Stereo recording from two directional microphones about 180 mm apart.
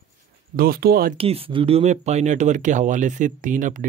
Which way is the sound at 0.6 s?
55° right (ahead or behind).